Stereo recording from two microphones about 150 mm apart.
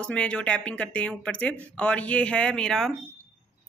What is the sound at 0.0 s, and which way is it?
A woman's voice, 5° left (ahead or behind).